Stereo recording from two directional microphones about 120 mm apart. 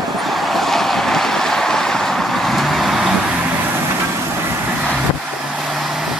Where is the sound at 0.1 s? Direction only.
Centre (ahead or behind).